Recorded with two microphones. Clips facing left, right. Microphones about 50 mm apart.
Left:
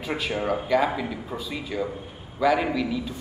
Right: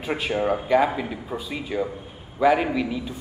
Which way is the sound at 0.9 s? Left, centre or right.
Centre.